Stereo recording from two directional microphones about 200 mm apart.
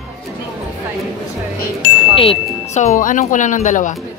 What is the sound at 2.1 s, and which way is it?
Speech, 30° left (ahead or behind).